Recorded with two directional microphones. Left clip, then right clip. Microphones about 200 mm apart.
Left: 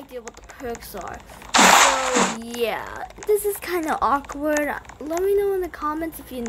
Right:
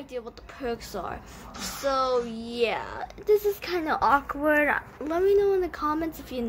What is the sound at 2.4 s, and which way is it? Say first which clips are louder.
Speech: left 2 dB; 15° left (ahead or behind).